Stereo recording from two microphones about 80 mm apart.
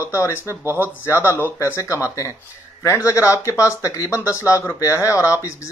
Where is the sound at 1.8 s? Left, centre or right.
Left.